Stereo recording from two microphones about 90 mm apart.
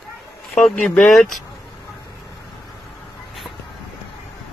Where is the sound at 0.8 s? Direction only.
15° left (ahead or behind).